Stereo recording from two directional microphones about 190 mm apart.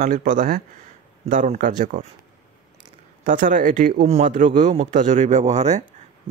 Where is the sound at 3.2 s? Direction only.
45° right (ahead or behind).